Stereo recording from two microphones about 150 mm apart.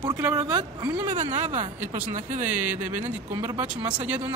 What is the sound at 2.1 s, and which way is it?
Speech, 55° right (ahead or behind).